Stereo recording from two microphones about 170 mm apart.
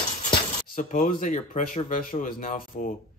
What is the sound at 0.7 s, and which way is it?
Speech, 50° left (ahead or behind).